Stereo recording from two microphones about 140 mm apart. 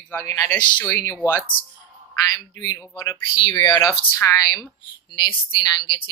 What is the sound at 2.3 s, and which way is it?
A woman's voice, 25° left (ahead or behind).